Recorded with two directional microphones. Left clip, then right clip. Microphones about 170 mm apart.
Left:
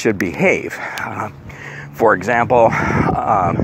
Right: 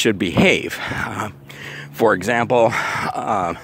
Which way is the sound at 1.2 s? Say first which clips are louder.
Left 2 dB; 70° right (ahead or behind).